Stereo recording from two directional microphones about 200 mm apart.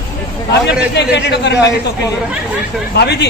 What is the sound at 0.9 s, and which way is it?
Speech, 60° left (ahead or behind).